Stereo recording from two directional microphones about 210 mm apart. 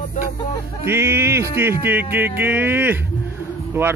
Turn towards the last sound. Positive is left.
turn(degrees=-10)  # may be behind; listen again after turning